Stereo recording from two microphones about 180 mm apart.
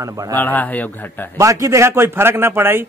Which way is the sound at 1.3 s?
15° right (ahead or behind).